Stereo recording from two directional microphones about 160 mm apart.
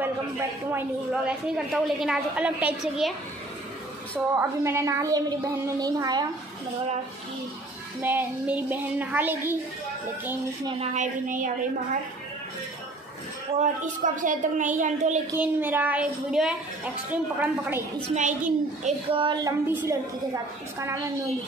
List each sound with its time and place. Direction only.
0.0 s a woman's voice: 15° right (ahead or behind)
1.7 s a woman's voice: centre (ahead or behind)
4.4 s a woman's voice: 15° right (ahead or behind)
8.0 s a woman's voice: 10° right (ahead or behind)
10.8 s a woman's voice: 45° right (ahead or behind)
13.6 s a woman's voice: 55° right (ahead or behind)
15.3 s a woman's voice: 10° right (ahead or behind)
18.1 s a woman's voice: 50° right (ahead or behind)
19.1 s a woman's voice: 30° right (ahead or behind)
19.7 s a woman's voice: 10° right (ahead or behind)